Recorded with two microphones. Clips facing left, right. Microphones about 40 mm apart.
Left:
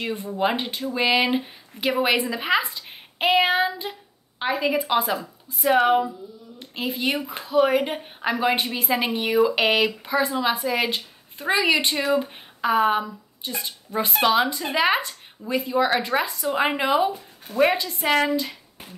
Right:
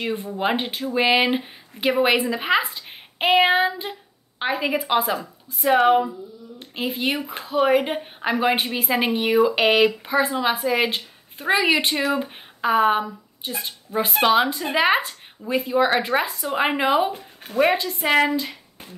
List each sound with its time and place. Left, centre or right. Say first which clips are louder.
0.0 s speech: even; centre
5.5 s speech: right 2 dB; centre